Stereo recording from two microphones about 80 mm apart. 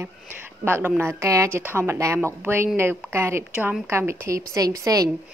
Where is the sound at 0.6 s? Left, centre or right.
Right.